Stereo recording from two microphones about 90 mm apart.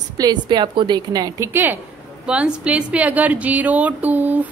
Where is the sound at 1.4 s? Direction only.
25° right (ahead or behind).